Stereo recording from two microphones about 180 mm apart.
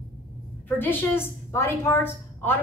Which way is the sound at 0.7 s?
10° left (ahead or behind).